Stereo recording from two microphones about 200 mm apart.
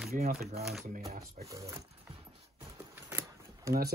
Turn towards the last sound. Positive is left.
turn(degrees=-10)  # may be behind; listen again after turning